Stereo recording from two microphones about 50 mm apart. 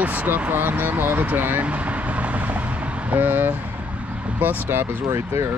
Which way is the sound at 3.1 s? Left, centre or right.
Right.